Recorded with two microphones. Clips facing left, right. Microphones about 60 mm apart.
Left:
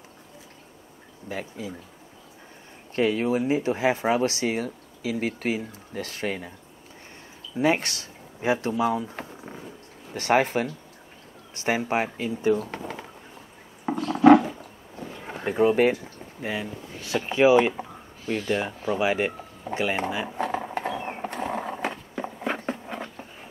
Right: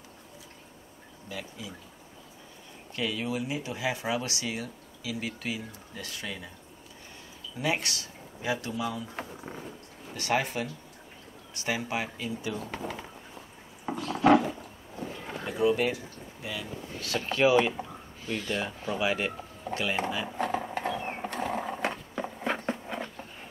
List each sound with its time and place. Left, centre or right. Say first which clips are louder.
1.6 s speech: left 7 dB; left
3.0 s speech: left 9 dB; left
7.5 s speech: left 7 dB; left
10.1 s speech: left 7 dB; left
14.0 s a sound: left 6 dB; centre
15.2 s speech: left 5 dB; left
17.0 s speech: left 5 dB; left
20.3 s a sound: left 2 dB; centre
22.7 s insect: left 1 dB; centre